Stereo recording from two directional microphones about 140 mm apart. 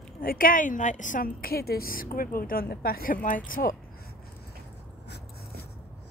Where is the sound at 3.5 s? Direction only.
90° left.